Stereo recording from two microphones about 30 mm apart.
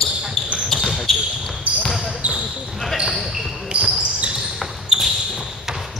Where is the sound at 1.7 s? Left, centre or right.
Right.